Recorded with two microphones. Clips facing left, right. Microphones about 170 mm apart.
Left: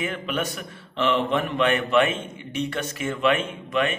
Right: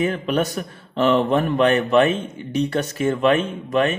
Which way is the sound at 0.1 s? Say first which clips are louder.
Right 6 dB; 35° right (ahead or behind).